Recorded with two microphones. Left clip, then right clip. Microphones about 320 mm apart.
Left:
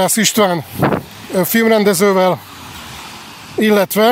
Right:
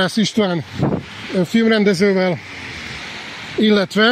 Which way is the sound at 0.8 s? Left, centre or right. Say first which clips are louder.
Left 6 dB; left.